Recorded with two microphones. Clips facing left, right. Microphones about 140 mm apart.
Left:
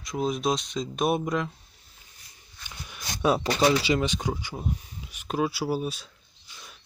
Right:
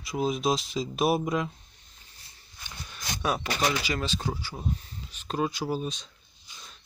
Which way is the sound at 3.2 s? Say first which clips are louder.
Left 6 dB; 20° left (ahead or behind).